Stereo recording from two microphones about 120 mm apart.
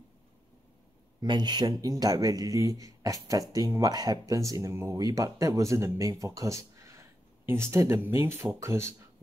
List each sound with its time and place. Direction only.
1.2 s speech: 40° right (ahead or behind); by 8.9 s 20° right (ahead or behind)